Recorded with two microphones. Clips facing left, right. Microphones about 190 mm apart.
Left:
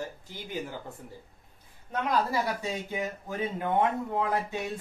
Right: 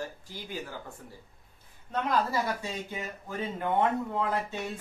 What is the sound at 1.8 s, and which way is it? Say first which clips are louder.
Speech: even; 15° left (ahead or behind).